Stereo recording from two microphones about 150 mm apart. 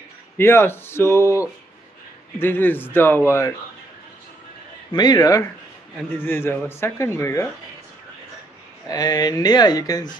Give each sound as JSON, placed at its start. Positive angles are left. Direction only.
{"t": 0.4, "sound": "a man's voice", "side_deg": 15}
{"t": 4.9, "sound": "speech", "side_deg": 25}
{"t": 6.2, "sound": "a man's voice", "side_deg": 15}
{"t": 8.8, "sound": "speech", "side_deg": 25}